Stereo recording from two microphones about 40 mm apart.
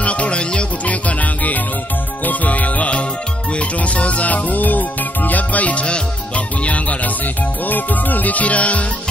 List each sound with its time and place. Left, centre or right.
0.0 s music: left
0.8 s music: left
7.6 s music: left